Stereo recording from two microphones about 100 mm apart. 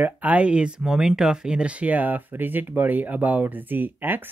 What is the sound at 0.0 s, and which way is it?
Speech, 15° right (ahead or behind).